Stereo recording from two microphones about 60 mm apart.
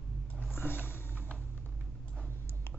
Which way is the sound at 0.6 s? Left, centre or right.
Left.